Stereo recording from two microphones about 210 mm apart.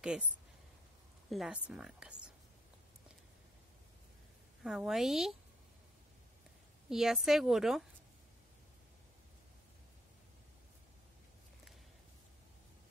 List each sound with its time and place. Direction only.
0.0 s speech: 5° right (ahead or behind)
1.3 s speech: centre (ahead or behind)
4.6 s speech: centre (ahead or behind)
6.9 s speech: centre (ahead or behind)